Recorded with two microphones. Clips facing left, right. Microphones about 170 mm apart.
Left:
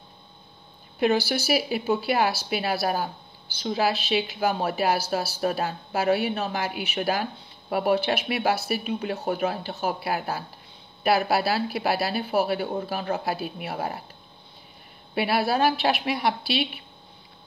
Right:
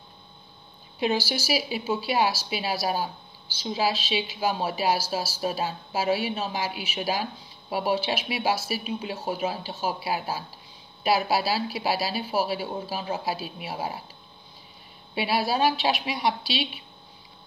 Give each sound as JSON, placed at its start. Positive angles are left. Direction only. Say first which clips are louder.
{"t": 0.9, "sound": "a woman's voice", "louder": "left 4 dB", "side_deg": 60}
{"t": 15.1, "sound": "a woman's voice", "louder": "left 2 dB", "side_deg": 60}